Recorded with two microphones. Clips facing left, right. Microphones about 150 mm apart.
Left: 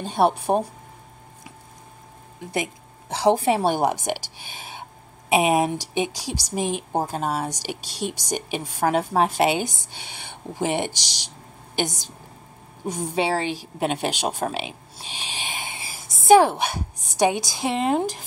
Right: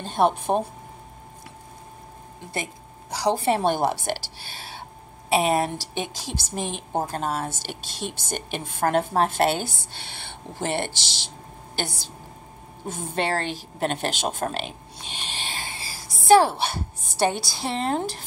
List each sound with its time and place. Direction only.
0.0 s a woman's voice: 10° left (ahead or behind)
2.5 s a woman's voice: 20° left (ahead or behind)
3.3 s a woman's voice: 10° left (ahead or behind)
5.3 s a woman's voice: 15° left (ahead or behind)